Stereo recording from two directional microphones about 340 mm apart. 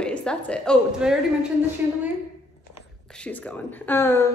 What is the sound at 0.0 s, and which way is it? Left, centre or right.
A woman's voice, centre.